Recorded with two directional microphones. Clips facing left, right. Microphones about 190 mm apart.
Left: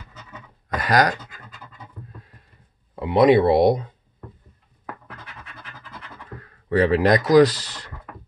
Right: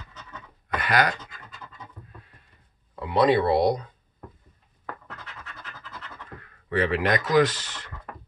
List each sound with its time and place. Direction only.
0.7 s speech: 40° left (ahead or behind)
3.0 s speech: 20° left (ahead or behind)
5.2 s scratch: 10° left (ahead or behind)
6.4 s speech: 40° left (ahead or behind)